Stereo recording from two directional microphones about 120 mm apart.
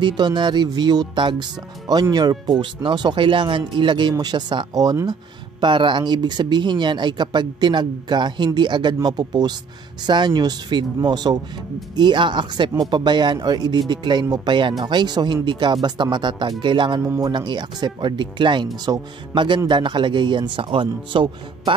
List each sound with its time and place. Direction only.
0.0 s speech: 40° right (ahead or behind)
17.0 s speech: 20° right (ahead or behind)
17.3 s speech: 40° right (ahead or behind)